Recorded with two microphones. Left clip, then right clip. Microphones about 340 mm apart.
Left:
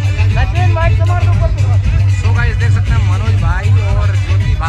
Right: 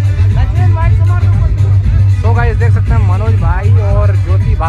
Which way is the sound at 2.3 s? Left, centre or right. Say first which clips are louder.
Right 4 dB; centre.